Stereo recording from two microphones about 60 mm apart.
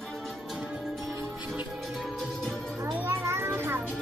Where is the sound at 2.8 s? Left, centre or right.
Right.